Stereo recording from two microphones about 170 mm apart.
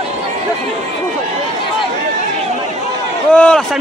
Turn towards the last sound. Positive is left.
turn(degrees=5)  # may be behind; listen again after turning